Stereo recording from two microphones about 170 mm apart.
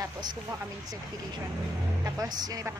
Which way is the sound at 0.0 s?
25° right (ahead or behind).